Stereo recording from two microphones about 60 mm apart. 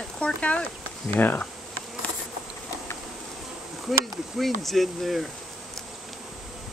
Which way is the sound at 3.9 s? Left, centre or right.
Centre.